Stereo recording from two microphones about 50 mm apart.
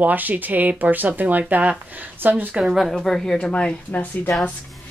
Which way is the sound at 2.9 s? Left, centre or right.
Centre.